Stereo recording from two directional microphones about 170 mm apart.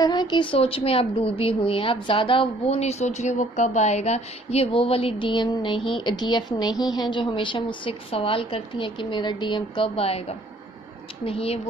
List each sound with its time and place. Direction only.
0.0 s a woman's voice: 25° left (ahead or behind)